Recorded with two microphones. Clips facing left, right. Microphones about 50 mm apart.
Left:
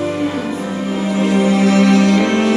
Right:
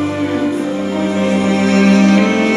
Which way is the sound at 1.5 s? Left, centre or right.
Right.